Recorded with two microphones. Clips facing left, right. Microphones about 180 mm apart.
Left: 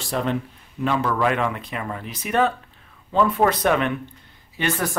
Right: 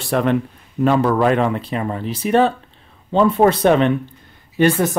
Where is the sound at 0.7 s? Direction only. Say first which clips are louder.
Right 7 dB; 40° right (ahead or behind).